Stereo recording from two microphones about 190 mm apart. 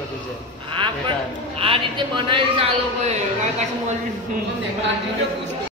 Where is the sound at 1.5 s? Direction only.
25° right (ahead or behind).